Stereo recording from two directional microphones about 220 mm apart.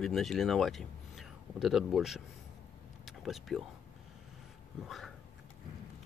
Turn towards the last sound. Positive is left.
turn(degrees=0)  # may be behind; listen again after turning